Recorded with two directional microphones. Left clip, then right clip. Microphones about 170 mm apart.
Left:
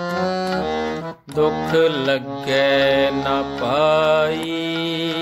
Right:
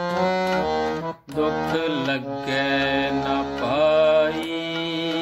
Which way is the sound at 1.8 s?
50° left (ahead or behind).